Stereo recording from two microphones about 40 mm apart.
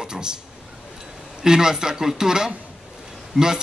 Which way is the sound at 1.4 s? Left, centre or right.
Centre.